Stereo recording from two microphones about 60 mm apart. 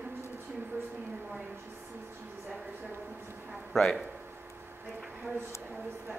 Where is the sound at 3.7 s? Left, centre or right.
Centre.